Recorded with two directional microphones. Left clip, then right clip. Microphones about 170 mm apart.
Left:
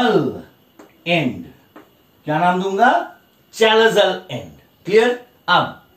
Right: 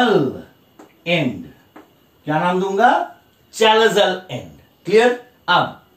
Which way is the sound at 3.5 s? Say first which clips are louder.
Even; 15° right (ahead or behind).